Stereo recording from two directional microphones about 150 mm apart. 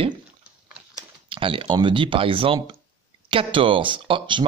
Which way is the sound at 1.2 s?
35° right (ahead or behind).